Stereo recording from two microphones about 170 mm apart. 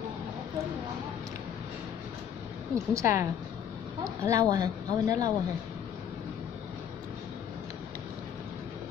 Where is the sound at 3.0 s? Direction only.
15° right (ahead or behind).